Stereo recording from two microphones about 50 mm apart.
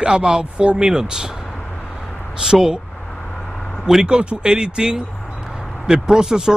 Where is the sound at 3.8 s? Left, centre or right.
Centre.